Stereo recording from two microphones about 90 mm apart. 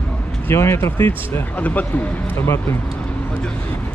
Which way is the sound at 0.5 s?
25° left (ahead or behind).